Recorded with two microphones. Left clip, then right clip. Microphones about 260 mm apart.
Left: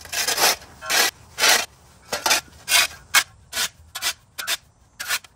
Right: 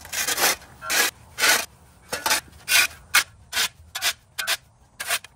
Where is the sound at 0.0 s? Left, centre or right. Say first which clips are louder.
Left 3 dB; left.